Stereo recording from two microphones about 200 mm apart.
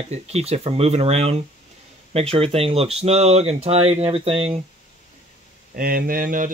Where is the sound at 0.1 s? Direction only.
30° right (ahead or behind).